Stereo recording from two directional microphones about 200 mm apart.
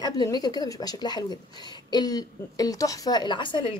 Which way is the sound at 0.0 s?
20° left (ahead or behind).